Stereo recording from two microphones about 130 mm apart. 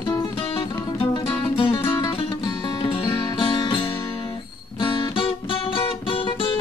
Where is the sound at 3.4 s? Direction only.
40° left (ahead or behind).